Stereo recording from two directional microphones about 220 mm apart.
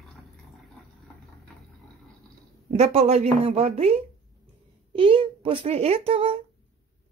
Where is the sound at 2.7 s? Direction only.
30° right (ahead or behind).